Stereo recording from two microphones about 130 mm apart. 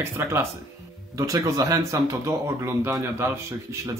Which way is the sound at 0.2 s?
20° right (ahead or behind).